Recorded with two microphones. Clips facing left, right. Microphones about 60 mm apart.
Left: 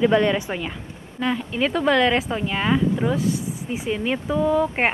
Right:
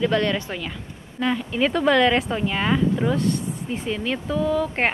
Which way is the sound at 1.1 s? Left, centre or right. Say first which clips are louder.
Right 1 dB; centre.